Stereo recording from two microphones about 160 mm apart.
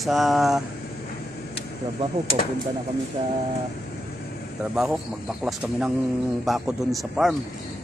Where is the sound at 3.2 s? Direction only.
30° right (ahead or behind).